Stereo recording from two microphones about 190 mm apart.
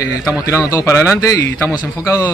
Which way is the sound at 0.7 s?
15° left (ahead or behind).